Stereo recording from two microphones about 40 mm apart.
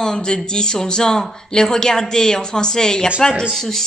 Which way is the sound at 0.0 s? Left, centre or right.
Centre.